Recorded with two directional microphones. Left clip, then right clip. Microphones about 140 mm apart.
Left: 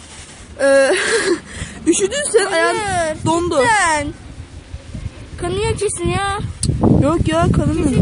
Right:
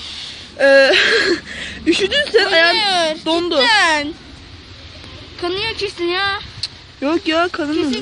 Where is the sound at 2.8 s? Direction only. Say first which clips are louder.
Right 3 dB; 35° left (ahead or behind).